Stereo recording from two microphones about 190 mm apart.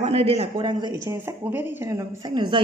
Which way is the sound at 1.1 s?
10° right (ahead or behind).